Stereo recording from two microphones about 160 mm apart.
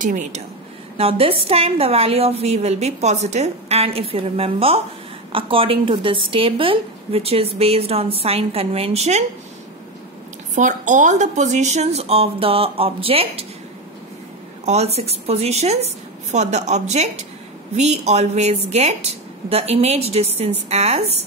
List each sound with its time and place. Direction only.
0.0 s a woman's voice: 55° right (ahead or behind)
0.9 s a woman's voice: 35° right (ahead or behind)
10.5 s a woman's voice: 50° right (ahead or behind)
14.7 s a woman's voice: 40° right (ahead or behind)